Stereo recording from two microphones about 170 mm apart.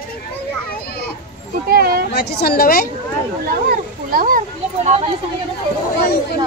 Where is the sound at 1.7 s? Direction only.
65° right (ahead or behind).